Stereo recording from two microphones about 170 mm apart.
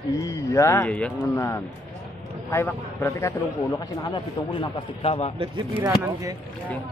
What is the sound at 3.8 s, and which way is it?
A man's voice, 25° left (ahead or behind).